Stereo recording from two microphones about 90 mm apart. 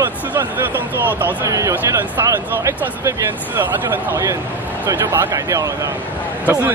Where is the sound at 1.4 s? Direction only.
35° right (ahead or behind); by 4.1 s 20° right (ahead or behind).